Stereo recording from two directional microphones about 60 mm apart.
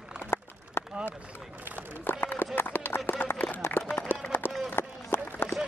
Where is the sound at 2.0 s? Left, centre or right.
Left.